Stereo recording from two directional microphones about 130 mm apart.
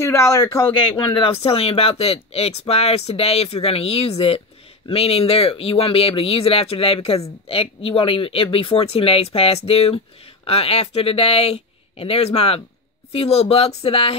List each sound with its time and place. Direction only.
0.0 s a man's voice: 20° left (ahead or behind)
0.9 s speech: 40° left (ahead or behind)